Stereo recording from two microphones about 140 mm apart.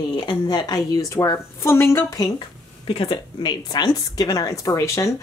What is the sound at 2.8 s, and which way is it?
Speech, 40° left (ahead or behind).